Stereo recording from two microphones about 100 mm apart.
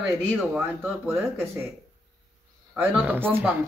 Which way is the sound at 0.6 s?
25° right (ahead or behind).